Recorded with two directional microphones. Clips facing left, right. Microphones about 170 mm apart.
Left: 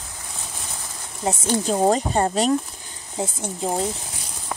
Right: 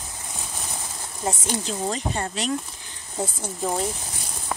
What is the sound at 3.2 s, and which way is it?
Speech, 20° left (ahead or behind).